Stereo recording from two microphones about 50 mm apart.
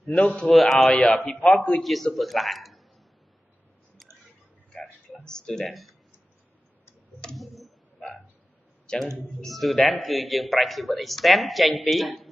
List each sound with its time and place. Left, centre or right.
0.1 s a man's voice: centre
0.5 s a man's voice: centre
0.9 s a man's voice: centre
1.8 s a man's voice: centre
5.2 s speech: centre
5.7 s a man's voice: centre
7.3 s a sound: centre
8.9 s speech: centre
9.5 s a man's voice: centre